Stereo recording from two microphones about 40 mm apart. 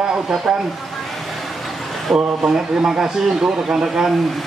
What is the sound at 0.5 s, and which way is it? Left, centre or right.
Speech, centre.